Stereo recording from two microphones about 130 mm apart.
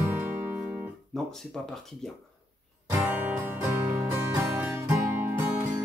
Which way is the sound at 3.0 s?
15° right (ahead or behind).